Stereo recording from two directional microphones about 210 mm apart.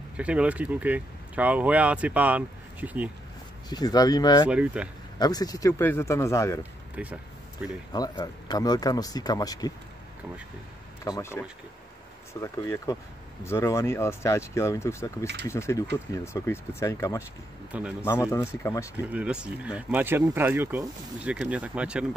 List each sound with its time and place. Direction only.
0.2 s speech: 5° right (ahead or behind)
3.6 s speech: 20° left (ahead or behind)
4.5 s speech: 5° right (ahead or behind)
5.2 s speech: 20° left (ahead or behind)
7.0 s speech: 5° right (ahead or behind)
7.9 s speech: 20° left (ahead or behind)
11.1 s speech: 15° left (ahead or behind)
19.1 s speech: 5° right (ahead or behind)